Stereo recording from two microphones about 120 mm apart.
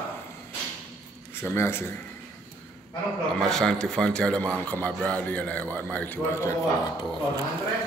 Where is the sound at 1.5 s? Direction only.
20° left (ahead or behind).